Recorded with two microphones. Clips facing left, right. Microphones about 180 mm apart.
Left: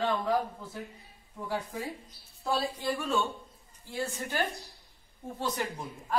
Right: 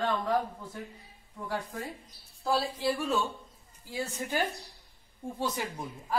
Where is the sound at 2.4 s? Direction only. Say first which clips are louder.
Right 2 dB; centre (ahead or behind).